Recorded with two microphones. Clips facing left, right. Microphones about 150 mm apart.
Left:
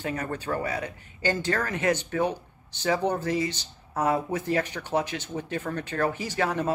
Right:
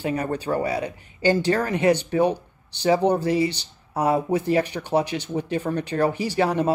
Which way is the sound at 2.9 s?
30° right (ahead or behind).